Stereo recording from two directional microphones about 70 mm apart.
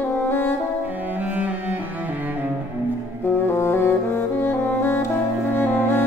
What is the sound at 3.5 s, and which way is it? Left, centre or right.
Brass instrument, left.